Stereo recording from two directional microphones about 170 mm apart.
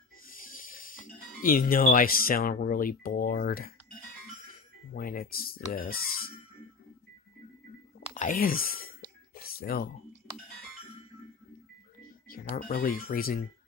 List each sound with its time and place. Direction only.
0.3 s speech: 55° left (ahead or behind)
4.9 s speech: 60° left (ahead or behind)
8.1 s speech: 50° left (ahead or behind)
9.3 s a sound: 60° left (ahead or behind)
12.3 s speech: 60° left (ahead or behind)